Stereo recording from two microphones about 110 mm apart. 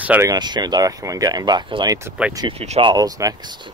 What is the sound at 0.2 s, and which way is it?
Speech, 40° right (ahead or behind).